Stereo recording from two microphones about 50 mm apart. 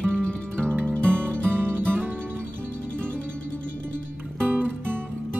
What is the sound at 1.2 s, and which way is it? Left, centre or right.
Music, right.